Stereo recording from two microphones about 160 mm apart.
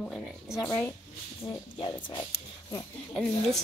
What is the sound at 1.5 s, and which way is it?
Speech, 30° left (ahead or behind).